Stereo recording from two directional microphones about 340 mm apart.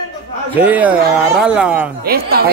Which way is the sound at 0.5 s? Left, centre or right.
Centre.